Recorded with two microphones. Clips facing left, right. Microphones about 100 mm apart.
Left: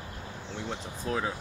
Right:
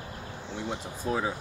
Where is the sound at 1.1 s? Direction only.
10° right (ahead or behind).